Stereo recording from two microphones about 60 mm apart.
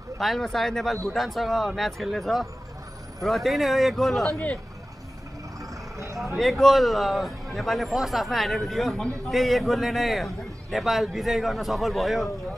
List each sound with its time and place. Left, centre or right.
0.2 s a man's voice: centre
5.6 s vehicle: right
6.3 s a man's voice: centre